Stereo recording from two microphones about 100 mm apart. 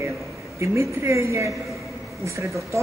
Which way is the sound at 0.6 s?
30° right (ahead or behind).